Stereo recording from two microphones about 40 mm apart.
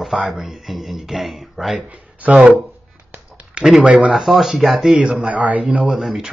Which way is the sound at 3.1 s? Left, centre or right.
Right.